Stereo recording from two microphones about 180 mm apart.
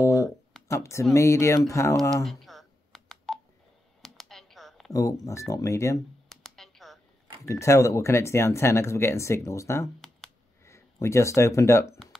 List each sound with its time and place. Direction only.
0.0 s a sound: 20° left (ahead or behind)
0.7 s speech: 15° left (ahead or behind)
2.2 s telephone dialing: centre (ahead or behind)
4.0 s computer keyboard: centre (ahead or behind)
4.9 s speech: 20° left (ahead or behind)
6.2 s computer keyboard: centre (ahead or behind)
7.4 s speech: 15° left (ahead or behind)